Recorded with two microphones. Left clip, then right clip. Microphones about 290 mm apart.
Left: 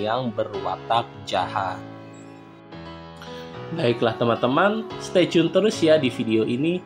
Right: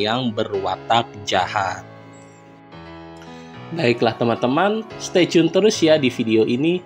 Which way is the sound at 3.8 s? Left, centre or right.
Centre.